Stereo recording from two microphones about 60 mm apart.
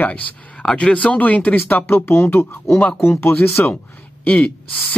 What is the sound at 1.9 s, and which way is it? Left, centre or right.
Speech, left.